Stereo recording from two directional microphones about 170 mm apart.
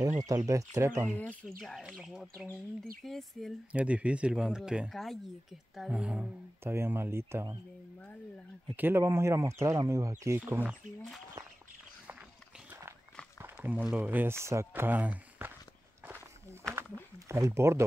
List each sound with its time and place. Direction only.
0.2 s speech: 20° right (ahead or behind)
1.6 s speech: centre (ahead or behind)
8.7 s speech: 15° right (ahead or behind)
13.4 s speech: 10° right (ahead or behind)
17.3 s speech: 15° right (ahead or behind)